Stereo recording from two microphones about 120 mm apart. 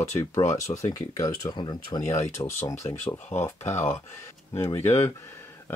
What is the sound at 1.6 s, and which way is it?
Speech, 40° left (ahead or behind).